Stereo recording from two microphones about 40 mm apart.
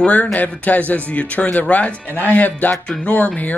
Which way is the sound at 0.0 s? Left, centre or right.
Left.